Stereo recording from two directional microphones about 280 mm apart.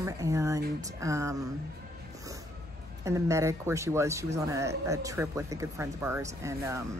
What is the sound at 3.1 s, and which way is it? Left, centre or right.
Speech, centre.